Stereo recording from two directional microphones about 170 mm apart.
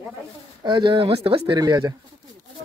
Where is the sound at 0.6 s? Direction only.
25° right (ahead or behind).